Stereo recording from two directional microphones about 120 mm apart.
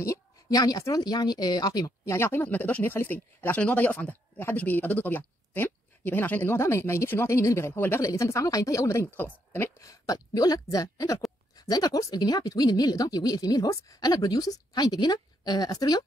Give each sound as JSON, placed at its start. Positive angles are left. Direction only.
{"t": 0.0, "sound": "speech", "side_deg": 30}